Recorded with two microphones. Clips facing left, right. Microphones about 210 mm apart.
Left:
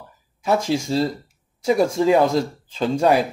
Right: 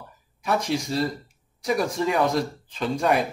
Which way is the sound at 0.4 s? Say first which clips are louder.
Left 4 dB; 25° left (ahead or behind).